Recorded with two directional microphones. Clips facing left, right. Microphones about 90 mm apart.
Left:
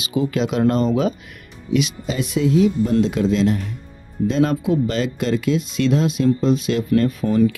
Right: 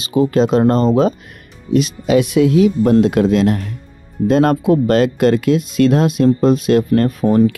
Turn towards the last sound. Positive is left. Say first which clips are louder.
# right 4 dB
turn(degrees=-50)  # may be behind; listen again after turning